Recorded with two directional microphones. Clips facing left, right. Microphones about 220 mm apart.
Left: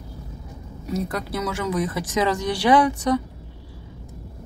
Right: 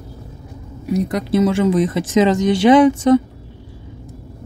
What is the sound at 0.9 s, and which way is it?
Speech, 15° right (ahead or behind).